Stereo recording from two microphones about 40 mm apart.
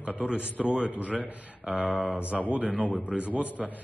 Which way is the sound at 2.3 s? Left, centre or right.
Centre.